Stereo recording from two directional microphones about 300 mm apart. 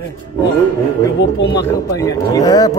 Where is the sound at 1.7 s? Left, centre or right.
Centre.